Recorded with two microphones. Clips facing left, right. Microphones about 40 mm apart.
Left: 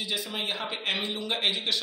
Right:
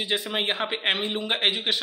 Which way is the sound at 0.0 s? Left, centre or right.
Right.